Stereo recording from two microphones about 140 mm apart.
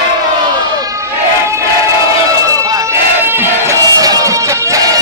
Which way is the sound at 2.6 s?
25° right (ahead or behind).